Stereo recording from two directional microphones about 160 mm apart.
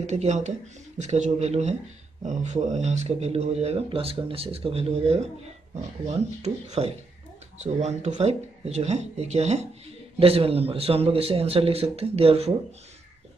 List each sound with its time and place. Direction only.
0.0 s a man's voice: 45° right (ahead or behind)